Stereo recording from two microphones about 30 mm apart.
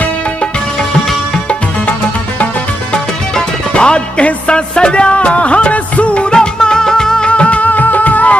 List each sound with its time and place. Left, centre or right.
3.7 s music: left
6.3 s music: left
7.2 s music: left
7.7 s music: left